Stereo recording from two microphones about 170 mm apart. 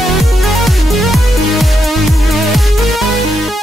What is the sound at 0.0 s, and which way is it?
Music, centre (ahead or behind).